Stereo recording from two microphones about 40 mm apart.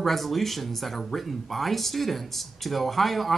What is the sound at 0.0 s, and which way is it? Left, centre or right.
Speech, centre.